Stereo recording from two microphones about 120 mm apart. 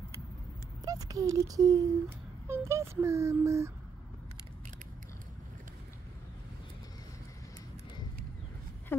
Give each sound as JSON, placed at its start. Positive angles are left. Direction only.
{"t": 0.8, "sound": "speech", "side_deg": -30}